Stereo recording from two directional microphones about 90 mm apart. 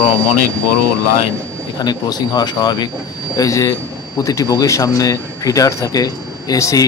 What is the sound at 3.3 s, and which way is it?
Speech, 40° left (ahead or behind).